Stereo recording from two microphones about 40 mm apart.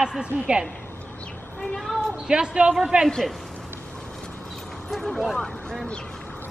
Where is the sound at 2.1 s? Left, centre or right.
Right.